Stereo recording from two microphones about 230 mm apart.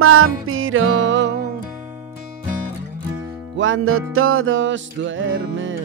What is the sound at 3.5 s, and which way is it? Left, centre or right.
Music, right.